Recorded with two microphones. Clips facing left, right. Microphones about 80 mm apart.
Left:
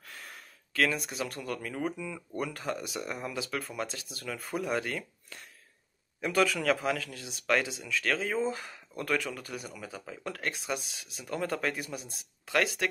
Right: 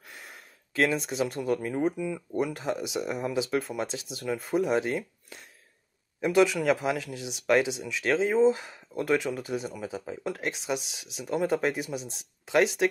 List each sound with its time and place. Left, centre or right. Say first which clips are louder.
0.1 s speech: even; centre